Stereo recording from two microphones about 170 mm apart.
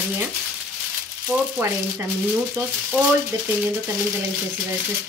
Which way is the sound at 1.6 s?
10° right (ahead or behind).